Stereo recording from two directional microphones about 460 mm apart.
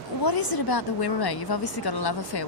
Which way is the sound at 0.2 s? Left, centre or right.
Left.